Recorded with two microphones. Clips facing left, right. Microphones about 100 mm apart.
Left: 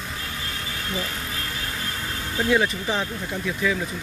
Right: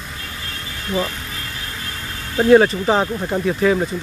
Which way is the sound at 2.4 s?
55° right (ahead or behind).